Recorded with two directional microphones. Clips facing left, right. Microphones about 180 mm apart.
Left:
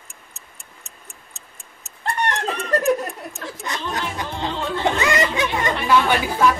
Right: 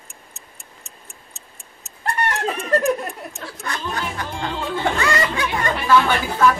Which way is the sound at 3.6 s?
20° left (ahead or behind).